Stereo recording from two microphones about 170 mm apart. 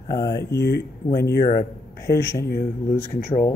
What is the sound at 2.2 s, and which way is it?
Speech, 15° left (ahead or behind).